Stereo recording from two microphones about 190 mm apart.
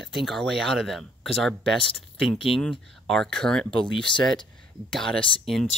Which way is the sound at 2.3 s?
30° left (ahead or behind).